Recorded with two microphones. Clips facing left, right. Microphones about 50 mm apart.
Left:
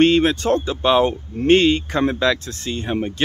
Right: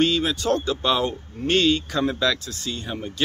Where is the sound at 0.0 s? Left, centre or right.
Left.